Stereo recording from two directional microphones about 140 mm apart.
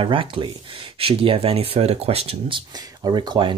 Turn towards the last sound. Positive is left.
turn(degrees=-30)  # may be behind; listen again after turning